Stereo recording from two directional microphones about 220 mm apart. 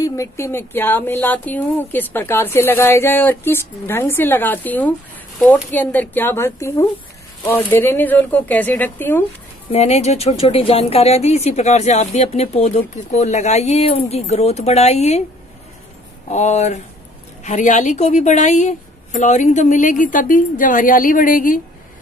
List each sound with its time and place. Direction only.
0.0 s speech: 15° left (ahead or behind)
9.7 s a woman's voice: 30° left (ahead or behind)
16.3 s a woman's voice: 30° left (ahead or behind)